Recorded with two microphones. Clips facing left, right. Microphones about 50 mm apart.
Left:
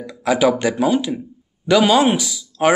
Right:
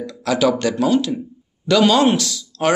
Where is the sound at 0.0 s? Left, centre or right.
Centre.